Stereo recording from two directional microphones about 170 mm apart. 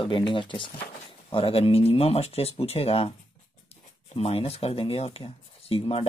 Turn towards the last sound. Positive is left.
turn(degrees=35)  # may be behind; listen again after turning